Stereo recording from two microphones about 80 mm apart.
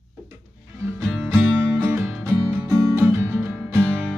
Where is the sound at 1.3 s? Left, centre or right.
Right.